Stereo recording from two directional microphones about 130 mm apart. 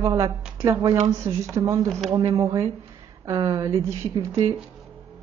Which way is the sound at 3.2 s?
35° right (ahead or behind).